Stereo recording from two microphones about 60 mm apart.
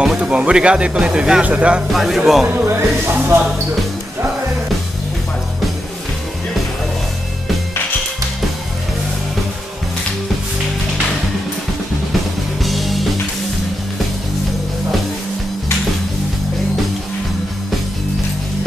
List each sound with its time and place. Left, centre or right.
0.2 s speech: centre
1.9 s speech: centre
2.6 s speech: right
12.6 s music: centre